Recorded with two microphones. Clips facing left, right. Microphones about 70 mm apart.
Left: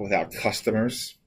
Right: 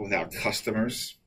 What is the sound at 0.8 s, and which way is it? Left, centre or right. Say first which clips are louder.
Speech: left 3 dB; centre.